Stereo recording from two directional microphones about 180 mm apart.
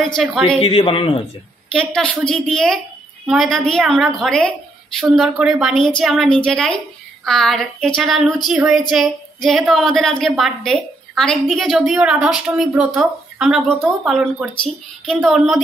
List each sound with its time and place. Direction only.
0.1 s a woman's voice: centre (ahead or behind)
0.6 s a man's voice: 30° left (ahead or behind)
1.7 s a woman's voice: 5° left (ahead or behind)